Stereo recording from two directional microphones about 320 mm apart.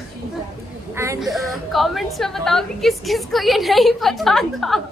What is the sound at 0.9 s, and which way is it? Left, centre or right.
A woman's voice, centre.